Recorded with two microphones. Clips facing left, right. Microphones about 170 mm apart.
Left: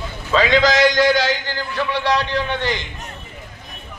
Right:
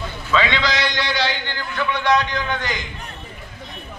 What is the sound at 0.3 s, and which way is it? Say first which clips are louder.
A man's voice: left 5 dB; 40° left (ahead or behind).